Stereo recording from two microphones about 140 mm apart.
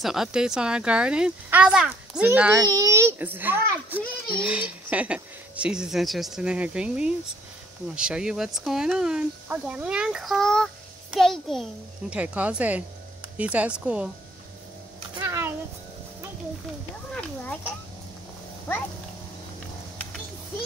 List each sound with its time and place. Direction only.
0.0 s speech: 5° right (ahead or behind)
2.6 s speech: 25° right (ahead or behind); by 14.1 s 10° right (ahead or behind)
15.2 s a sound: 20° right (ahead or behind)
17.1 s speech: 5° left (ahead or behind)